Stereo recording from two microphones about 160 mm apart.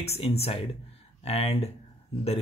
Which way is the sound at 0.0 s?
40° left (ahead or behind).